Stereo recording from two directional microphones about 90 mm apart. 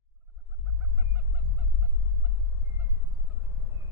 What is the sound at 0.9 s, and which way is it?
Honk, 25° right (ahead or behind).